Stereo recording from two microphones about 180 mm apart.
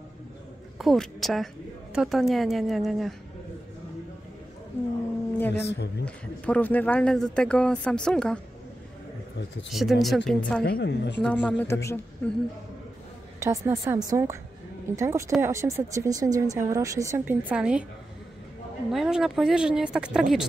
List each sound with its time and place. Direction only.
0.7 s a man's voice: centre (ahead or behind)
5.5 s a woman's voice: 70° left (ahead or behind)
6.0 s a man's voice: 10° left (ahead or behind)
9.7 s a man's voice: centre (ahead or behind)
10.6 s a woman's voice: 65° left (ahead or behind)
11.1 s speech: 5° left (ahead or behind)
13.4 s speech: 15° right (ahead or behind)
18.9 s a man's voice: centre (ahead or behind)